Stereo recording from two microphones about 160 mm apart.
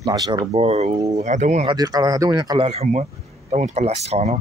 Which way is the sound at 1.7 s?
25° right (ahead or behind).